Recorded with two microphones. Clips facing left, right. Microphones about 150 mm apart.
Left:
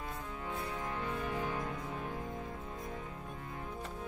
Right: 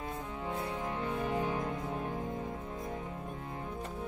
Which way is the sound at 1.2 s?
20° right (ahead or behind).